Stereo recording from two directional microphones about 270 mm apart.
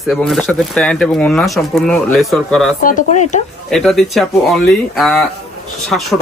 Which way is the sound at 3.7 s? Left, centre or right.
Centre.